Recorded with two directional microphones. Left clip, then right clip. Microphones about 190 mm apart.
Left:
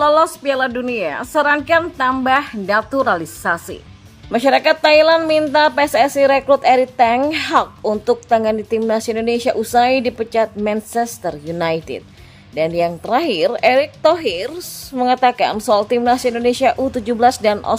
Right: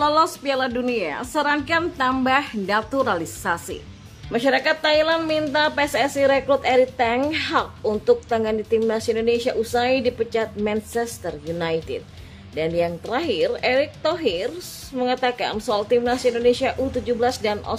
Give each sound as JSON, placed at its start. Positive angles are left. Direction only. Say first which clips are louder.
{"t": 0.0, "sound": "a woman's voice", "louder": "left 5 dB", "side_deg": 15}
{"t": 4.3, "sound": "a woman's voice", "louder": "left 6 dB", "side_deg": 25}